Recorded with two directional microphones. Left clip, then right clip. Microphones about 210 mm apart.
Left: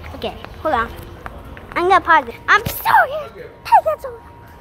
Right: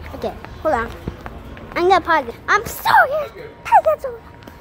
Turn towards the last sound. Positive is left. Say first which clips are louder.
# even
turn(degrees=0)  # may be behind; listen again after turning